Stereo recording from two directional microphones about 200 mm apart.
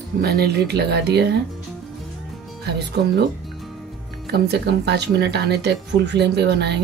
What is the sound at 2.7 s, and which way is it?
Speech, 55° right (ahead or behind).